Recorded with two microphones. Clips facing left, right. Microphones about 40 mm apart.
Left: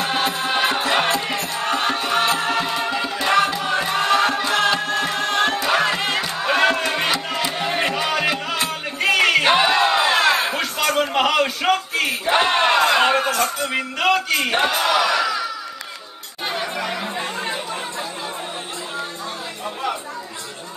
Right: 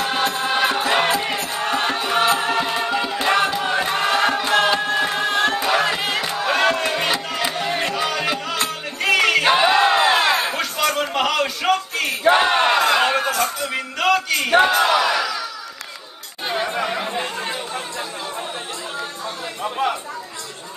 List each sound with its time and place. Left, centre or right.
0.0 s music: centre
9.8 s a sound: centre
14.5 s speech: centre
14.9 s crowd: centre
16.5 s chatter: centre